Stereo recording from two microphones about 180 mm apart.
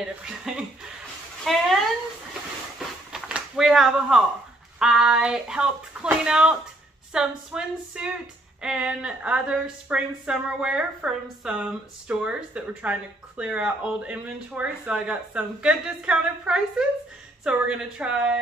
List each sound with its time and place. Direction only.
0.0 s a woman's voice: 5° right (ahead or behind)
3.1 s a sound: centre (ahead or behind)
4.7 s a woman's voice: 5° right (ahead or behind)